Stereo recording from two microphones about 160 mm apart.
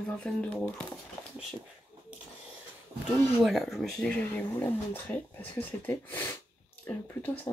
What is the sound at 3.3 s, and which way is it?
Speech, centre (ahead or behind).